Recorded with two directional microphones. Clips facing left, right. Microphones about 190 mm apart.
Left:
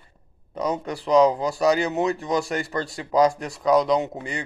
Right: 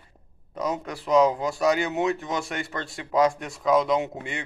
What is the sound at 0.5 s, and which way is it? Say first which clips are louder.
A man's voice: left 3 dB; centre (ahead or behind).